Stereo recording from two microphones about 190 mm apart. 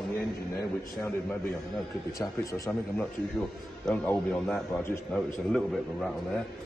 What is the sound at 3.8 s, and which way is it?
Speech, 5° left (ahead or behind).